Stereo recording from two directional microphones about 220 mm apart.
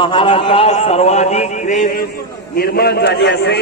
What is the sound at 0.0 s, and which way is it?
A man's voice, 20° left (ahead or behind).